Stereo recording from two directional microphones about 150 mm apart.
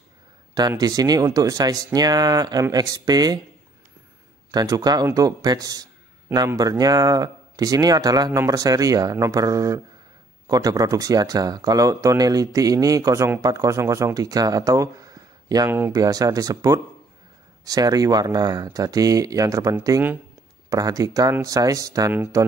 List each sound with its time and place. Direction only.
0.6 s speech: 25° right (ahead or behind)
4.5 s speech: 25° right (ahead or behind)
22.1 s speech: 10° right (ahead or behind)